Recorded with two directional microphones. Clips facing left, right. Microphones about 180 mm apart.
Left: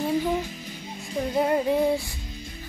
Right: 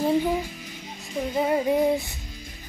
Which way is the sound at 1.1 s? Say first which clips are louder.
Left 1 dB; centre (ahead or behind).